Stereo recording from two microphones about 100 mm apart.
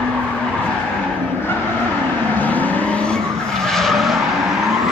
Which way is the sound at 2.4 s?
15° left (ahead or behind).